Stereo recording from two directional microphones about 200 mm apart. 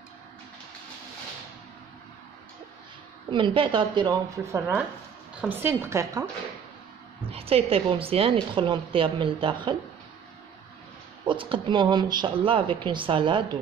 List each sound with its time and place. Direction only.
3.3 s a woman's voice: 25° right (ahead or behind)
7.2 s speech: 30° right (ahead or behind)
11.2 s speech: 25° right (ahead or behind)